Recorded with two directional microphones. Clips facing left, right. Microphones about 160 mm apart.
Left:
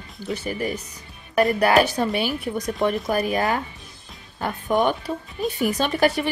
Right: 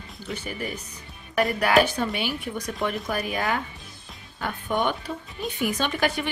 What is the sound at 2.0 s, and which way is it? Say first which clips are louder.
Speech: left 4 dB; 35° left (ahead or behind).